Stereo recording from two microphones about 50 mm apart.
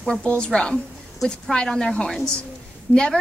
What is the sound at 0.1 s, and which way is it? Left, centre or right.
A woman's voice, left.